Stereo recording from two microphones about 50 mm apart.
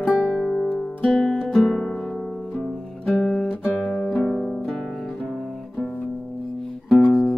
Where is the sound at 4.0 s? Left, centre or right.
Centre.